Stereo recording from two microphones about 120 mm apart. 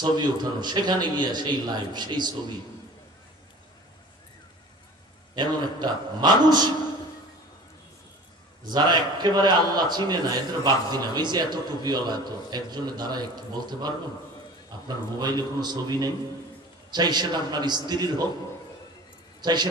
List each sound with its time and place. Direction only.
0.0 s a man's voice: 35° right (ahead or behind)
5.3 s a man's voice: 35° right (ahead or behind)
8.6 s a man's voice: 35° right (ahead or behind)
19.4 s a man's voice: 35° right (ahead or behind)